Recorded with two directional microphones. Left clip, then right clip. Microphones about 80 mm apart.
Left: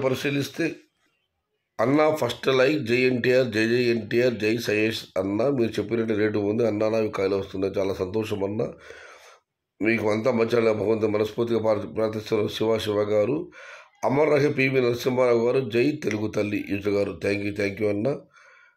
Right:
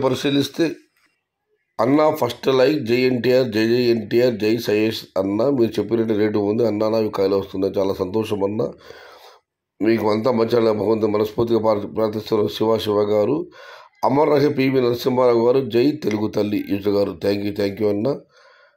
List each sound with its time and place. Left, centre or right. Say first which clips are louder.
0.0 s speech: right 6 dB; right
1.8 s speech: right 4 dB; right